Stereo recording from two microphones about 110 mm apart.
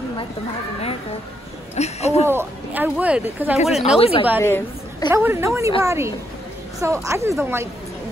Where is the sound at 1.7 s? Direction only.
85° left.